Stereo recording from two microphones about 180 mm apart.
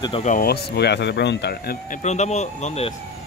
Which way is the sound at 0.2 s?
50° left (ahead or behind).